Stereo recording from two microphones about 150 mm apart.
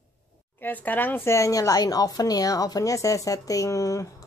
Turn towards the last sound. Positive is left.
turn(degrees=20)  # may be behind; listen again after turning